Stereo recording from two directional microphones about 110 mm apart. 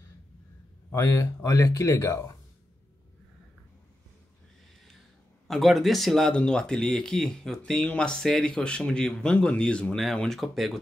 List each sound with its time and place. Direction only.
0.9 s speech: 20° left (ahead or behind)
5.5 s speech: centre (ahead or behind)